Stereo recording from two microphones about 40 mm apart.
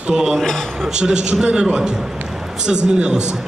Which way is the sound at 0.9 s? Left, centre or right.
Right.